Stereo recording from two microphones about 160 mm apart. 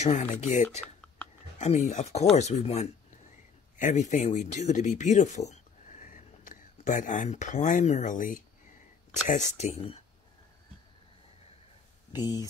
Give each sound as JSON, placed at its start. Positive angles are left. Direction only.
{"t": 0.0, "sound": "speech", "side_deg": 45}
{"t": 12.1, "sound": "speech", "side_deg": 25}